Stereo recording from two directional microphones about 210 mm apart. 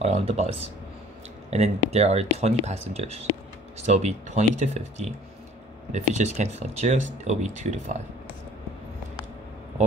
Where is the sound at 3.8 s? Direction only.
35° right (ahead or behind).